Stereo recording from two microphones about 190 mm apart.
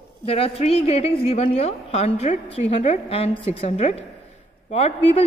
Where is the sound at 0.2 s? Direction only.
30° left (ahead or behind).